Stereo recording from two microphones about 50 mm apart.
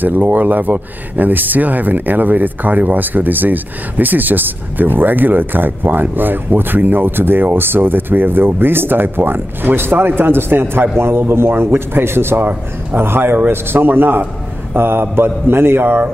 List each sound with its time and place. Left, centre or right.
0.0 s a man's voice: right